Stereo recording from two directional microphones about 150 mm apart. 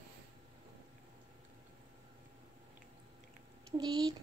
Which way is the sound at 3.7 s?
30° right (ahead or behind).